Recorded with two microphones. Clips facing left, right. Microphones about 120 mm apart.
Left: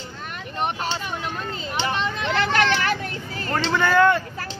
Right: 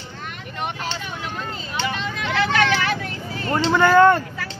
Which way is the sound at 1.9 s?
45° left (ahead or behind).